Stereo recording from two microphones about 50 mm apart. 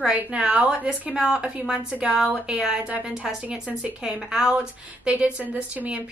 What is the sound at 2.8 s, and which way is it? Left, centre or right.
Speech, right.